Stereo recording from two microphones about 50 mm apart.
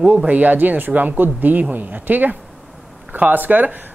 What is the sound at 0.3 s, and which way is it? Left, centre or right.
Speech, right.